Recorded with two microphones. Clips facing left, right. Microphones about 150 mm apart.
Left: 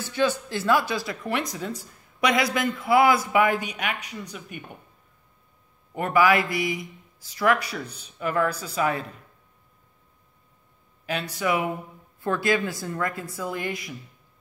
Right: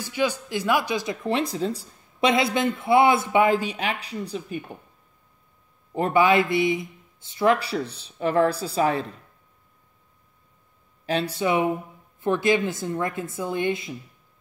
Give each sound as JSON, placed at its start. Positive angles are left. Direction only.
{"t": 0.0, "sound": "speech", "side_deg": -15}
{"t": 5.9, "sound": "speech", "side_deg": -25}
{"t": 11.1, "sound": "speech", "side_deg": -30}